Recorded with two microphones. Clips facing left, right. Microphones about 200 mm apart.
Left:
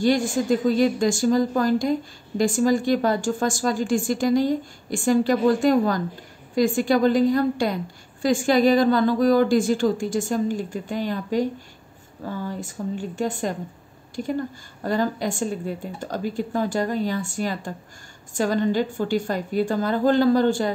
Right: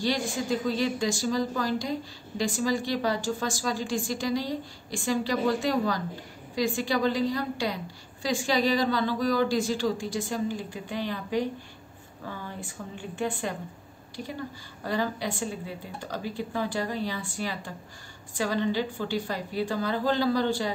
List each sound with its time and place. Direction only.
0.0 s a woman's voice: 50° left (ahead or behind)
14.8 s a woman's voice: 45° left (ahead or behind)